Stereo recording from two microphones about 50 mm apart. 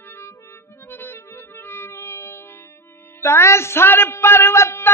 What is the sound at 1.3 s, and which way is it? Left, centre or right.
Music, left.